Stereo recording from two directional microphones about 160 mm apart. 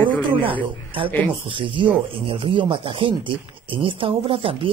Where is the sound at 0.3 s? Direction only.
30° right (ahead or behind).